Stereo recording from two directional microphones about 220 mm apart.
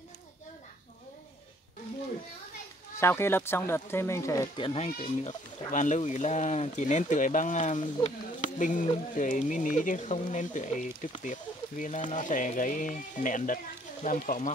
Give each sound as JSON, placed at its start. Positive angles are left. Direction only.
{"t": 3.0, "sound": "speech", "side_deg": 10}